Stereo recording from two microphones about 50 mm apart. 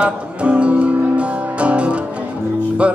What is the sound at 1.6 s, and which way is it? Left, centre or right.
Music, right.